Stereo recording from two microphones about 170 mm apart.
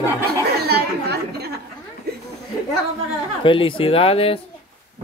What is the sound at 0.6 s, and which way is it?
Chatter, 70° right (ahead or behind).